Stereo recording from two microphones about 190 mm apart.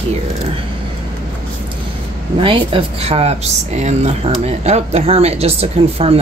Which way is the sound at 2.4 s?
30° right (ahead or behind).